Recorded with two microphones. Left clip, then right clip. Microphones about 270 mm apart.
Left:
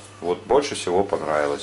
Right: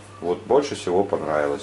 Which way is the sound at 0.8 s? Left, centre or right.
Centre.